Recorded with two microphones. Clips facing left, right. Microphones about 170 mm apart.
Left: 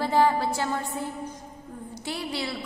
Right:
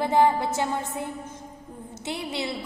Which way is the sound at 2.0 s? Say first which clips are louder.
Right 1 dB; 20° right (ahead or behind).